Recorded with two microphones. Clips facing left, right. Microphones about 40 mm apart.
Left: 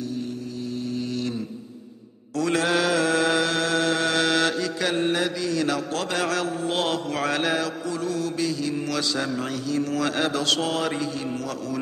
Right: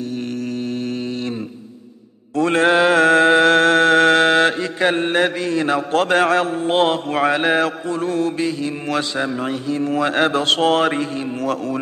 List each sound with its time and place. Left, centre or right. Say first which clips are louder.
2.3 s mantra: right 7 dB; right